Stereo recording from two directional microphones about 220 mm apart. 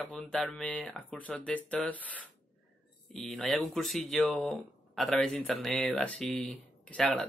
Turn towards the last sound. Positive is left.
turn(degrees=5)  # may be behind; listen again after turning